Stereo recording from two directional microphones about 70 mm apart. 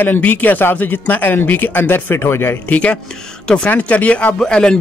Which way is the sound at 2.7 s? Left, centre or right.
Centre.